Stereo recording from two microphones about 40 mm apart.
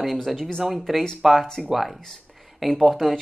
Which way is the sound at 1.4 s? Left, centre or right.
Centre.